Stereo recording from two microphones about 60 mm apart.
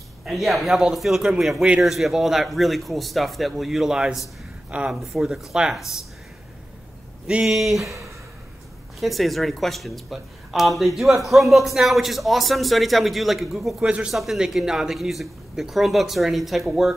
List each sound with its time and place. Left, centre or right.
0.2 s speech: centre
4.6 s speech: right
5.1 s speech: centre
7.4 s speech: centre
13.7 s speech: centre
14.1 s speech: centre